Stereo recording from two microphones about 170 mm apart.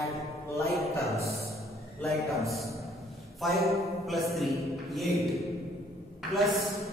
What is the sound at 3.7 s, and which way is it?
A man's voice, centre (ahead or behind).